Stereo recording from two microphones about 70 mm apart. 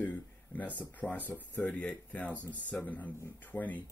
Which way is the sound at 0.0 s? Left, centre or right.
Left.